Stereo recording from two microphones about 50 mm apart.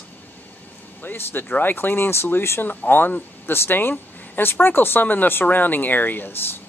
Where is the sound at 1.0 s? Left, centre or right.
Left.